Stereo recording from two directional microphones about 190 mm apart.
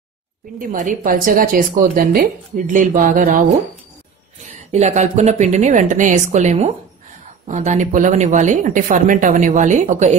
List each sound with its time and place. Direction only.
0.6 s speech: 40° right (ahead or behind)
4.6 s speech: 35° right (ahead or behind)